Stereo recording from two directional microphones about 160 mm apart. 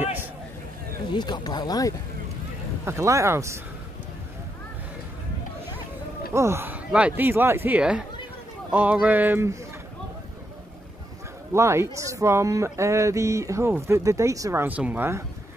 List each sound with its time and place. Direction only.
1.1 s speech: 25° left (ahead or behind)
2.8 s speech: 15° right (ahead or behind)
6.3 s speech: 15° right (ahead or behind)
11.5 s speech: 15° right (ahead or behind)